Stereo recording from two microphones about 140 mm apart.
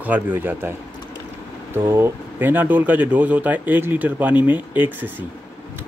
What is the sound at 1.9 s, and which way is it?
Speech, 15° right (ahead or behind).